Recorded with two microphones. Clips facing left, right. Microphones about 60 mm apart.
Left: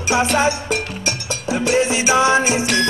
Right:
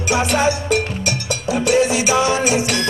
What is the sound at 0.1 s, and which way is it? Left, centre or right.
Music, left.